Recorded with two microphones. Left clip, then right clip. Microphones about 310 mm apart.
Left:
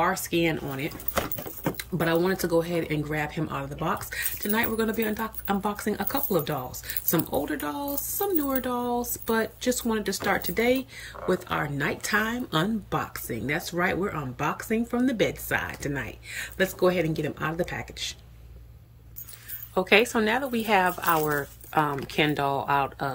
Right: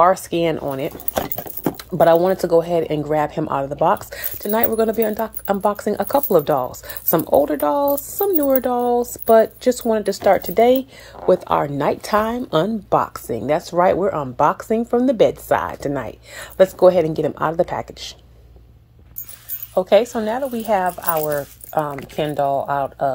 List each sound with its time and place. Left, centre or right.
0.1 s speech: centre
20.3 s speech: centre